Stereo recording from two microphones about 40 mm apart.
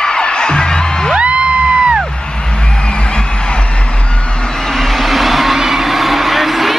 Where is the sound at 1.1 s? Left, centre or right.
Right.